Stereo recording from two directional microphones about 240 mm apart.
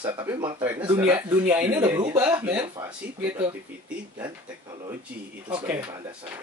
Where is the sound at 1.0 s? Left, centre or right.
Centre.